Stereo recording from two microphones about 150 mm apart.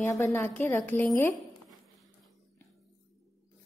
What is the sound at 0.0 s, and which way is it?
A woman's voice, 15° left (ahead or behind).